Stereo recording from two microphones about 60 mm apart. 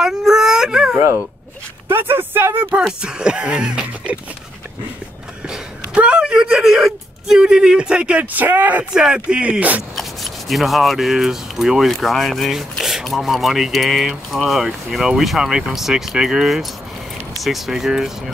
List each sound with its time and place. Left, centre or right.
0.0 s speech: centre
1.9 s speech: right
3.0 s music: centre
5.5 s speech: centre
8.3 s speech: right
8.9 s speech: centre
9.9 s speech: centre